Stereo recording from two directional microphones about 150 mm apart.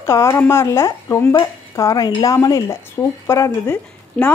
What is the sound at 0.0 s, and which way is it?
Speech, 20° left (ahead or behind).